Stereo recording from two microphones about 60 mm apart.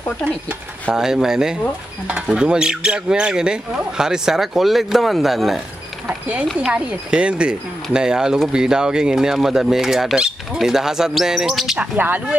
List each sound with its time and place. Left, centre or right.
0.9 s speech: centre
6.0 s speech: right; by 11.8 s centre
12.0 s speech: right